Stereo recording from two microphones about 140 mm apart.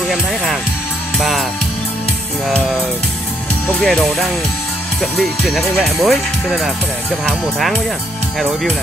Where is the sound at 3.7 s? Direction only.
5° left (ahead or behind).